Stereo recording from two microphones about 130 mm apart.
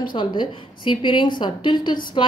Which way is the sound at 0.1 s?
35° left (ahead or behind).